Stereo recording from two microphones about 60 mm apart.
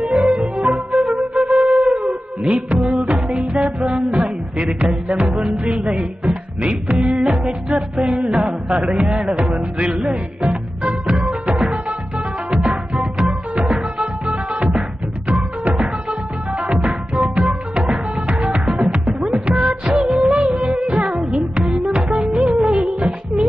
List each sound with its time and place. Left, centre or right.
0.1 s music: centre
0.6 s flute: centre
1.5 s wind instrument: centre
1.9 s howl: centre
2.7 s music: centre
3.0 s music: centre
4.2 s a sound: centre
5.2 s music: centre
7.2 s music: centre
9.8 s music: centre
18.4 s music: centre
20.6 s music: centre
22.4 s music of bollywood: centre
22.8 s music: centre